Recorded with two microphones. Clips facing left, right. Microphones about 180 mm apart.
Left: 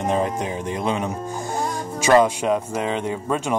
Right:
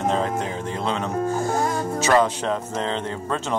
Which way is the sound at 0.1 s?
15° left (ahead or behind).